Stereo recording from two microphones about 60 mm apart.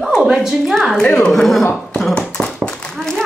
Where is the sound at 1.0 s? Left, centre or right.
Centre.